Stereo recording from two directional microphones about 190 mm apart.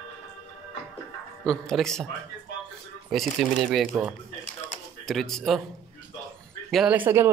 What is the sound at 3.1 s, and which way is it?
Speech, centre (ahead or behind).